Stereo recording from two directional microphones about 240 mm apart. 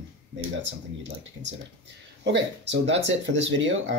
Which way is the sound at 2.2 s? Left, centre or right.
Right.